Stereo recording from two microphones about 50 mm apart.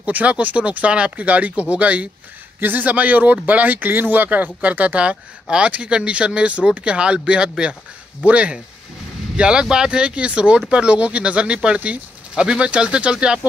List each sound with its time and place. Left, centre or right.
0.0 s speech: right